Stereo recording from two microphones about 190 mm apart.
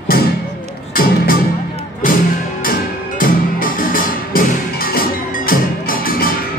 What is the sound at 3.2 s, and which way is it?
Music, 45° left (ahead or behind).